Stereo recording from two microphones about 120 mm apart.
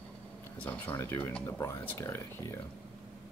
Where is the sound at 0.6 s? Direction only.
20° left (ahead or behind).